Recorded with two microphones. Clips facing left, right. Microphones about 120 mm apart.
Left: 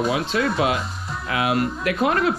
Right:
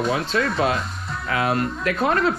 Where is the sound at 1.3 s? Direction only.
40° right (ahead or behind).